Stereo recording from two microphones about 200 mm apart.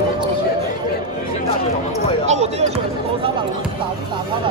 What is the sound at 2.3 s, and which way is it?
Basketball bounce, 35° right (ahead or behind).